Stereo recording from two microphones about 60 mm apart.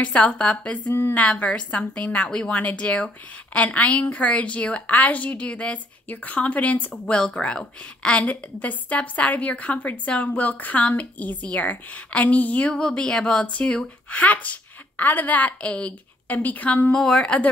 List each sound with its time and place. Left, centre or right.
0.0 s a woman's voice: centre
7.1 s a woman's voice: centre
12.7 s a woman's voice: centre
16.9 s a woman's voice: centre